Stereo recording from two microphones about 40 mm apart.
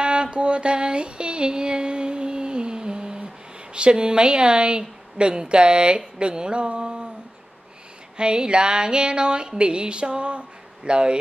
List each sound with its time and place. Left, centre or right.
0.0 s music: right
3.7 s a woman's voice: right
8.2 s a woman's voice: right